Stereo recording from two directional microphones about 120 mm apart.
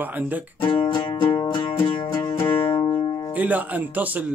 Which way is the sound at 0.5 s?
45° left (ahead or behind).